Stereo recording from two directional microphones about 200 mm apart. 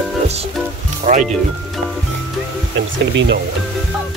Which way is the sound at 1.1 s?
40° right (ahead or behind).